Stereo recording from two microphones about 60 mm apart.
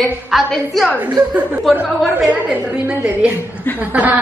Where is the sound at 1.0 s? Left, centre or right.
Right.